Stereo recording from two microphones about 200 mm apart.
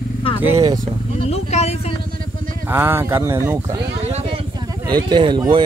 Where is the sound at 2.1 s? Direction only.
45° right (ahead or behind).